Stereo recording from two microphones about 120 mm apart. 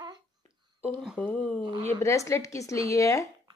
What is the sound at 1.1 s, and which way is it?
Speech, 10° left (ahead or behind).